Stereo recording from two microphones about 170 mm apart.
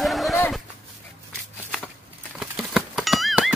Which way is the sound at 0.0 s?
Centre (ahead or behind).